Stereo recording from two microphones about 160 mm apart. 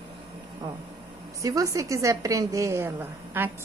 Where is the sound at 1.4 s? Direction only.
20° right (ahead or behind).